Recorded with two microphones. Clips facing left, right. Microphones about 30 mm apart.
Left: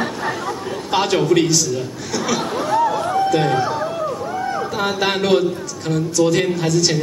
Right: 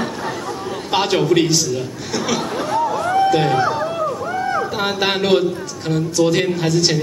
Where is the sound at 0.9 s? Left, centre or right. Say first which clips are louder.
Even; centre.